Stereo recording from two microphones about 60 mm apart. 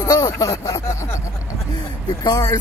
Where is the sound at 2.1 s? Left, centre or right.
Left.